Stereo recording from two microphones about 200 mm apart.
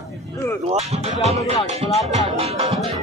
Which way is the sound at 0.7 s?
30° right (ahead or behind).